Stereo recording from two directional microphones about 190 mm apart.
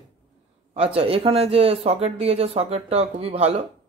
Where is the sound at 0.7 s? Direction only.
30° right (ahead or behind).